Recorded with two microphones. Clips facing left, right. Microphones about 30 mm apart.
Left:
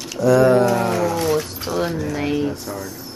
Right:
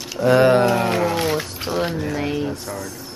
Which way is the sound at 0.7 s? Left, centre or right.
Right.